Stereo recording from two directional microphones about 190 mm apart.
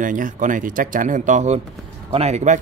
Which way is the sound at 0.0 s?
45° right (ahead or behind).